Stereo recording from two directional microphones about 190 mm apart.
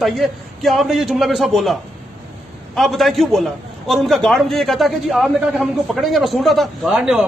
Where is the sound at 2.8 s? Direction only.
Centre (ahead or behind).